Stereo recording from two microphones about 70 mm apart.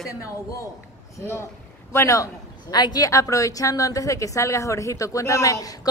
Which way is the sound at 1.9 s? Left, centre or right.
Left.